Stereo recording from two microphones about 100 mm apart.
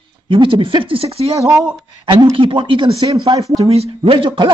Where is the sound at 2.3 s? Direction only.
60° right (ahead or behind).